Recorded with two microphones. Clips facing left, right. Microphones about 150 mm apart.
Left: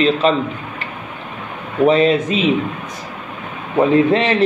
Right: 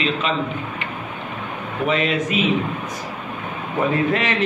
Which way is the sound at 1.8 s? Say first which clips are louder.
Left 8 dB; 30° left (ahead or behind).